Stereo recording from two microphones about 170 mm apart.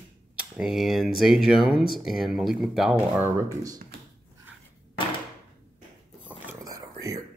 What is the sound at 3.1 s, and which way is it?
Speech, 10° right (ahead or behind).